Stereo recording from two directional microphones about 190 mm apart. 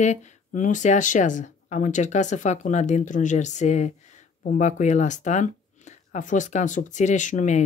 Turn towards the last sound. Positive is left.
turn(degrees=40)  # may be behind; listen again after turning